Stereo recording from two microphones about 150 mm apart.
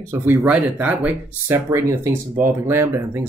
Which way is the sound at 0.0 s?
15° right (ahead or behind).